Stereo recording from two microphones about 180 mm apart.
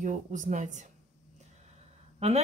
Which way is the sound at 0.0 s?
45° right (ahead or behind).